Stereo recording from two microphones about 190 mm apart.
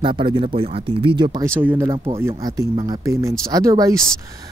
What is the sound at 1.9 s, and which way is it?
Speech, 30° right (ahead or behind).